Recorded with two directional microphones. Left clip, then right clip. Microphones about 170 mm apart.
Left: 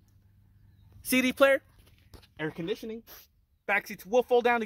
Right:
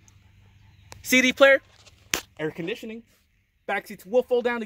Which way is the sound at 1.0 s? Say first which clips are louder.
Right 6 dB; 10° right (ahead or behind).